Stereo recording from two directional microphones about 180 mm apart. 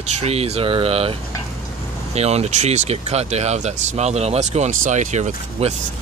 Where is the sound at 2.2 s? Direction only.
35° right (ahead or behind).